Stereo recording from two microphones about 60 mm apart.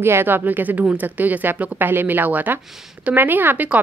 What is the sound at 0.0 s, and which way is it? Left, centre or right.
A woman's voice, right.